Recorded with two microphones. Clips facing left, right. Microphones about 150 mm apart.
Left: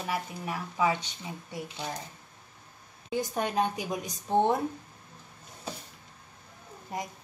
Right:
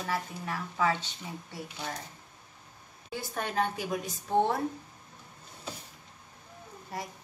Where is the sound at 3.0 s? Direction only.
15° left (ahead or behind).